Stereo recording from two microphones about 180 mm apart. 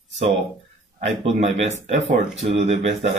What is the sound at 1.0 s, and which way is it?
Speech, 35° right (ahead or behind).